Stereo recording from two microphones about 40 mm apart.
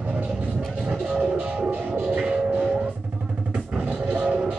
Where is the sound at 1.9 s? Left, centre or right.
Right.